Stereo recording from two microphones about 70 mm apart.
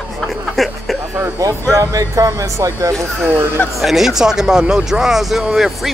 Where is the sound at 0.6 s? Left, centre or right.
Centre.